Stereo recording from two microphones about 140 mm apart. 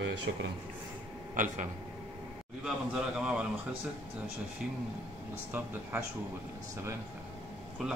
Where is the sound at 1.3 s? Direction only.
70° right (ahead or behind).